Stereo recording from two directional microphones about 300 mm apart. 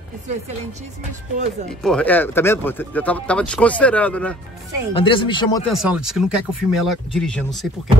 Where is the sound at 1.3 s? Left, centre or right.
Right.